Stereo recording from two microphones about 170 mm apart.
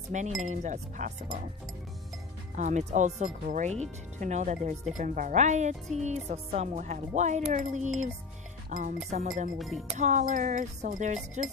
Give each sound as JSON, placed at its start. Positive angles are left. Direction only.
{"t": 0.1, "sound": "speech", "side_deg": -45}
{"t": 2.5, "sound": "speech", "side_deg": -45}
{"t": 9.6, "sound": "speech", "side_deg": 0}
{"t": 9.9, "sound": "speech", "side_deg": -45}